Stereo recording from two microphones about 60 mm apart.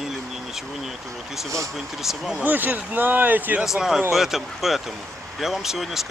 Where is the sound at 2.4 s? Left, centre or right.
Right.